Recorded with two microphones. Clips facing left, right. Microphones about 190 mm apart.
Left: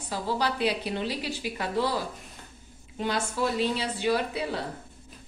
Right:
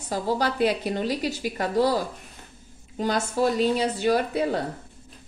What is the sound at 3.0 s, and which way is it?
A woman's voice, 40° right (ahead or behind).